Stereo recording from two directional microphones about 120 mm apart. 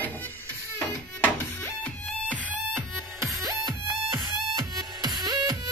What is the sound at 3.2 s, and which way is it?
Music, 30° right (ahead or behind).